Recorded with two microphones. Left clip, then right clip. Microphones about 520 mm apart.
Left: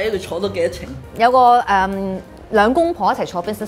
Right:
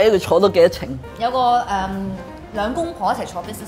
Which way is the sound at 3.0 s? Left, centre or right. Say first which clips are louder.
Left 3 dB; left.